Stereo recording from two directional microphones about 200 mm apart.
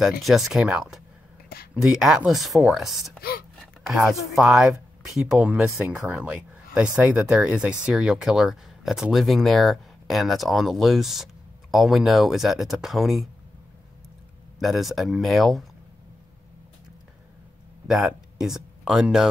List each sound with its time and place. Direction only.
0.2 s speech: centre (ahead or behind)
3.2 s gasp: 50° left (ahead or behind)
3.5 s speech: centre (ahead or behind)
14.6 s speech: centre (ahead or behind)
17.8 s speech: centre (ahead or behind)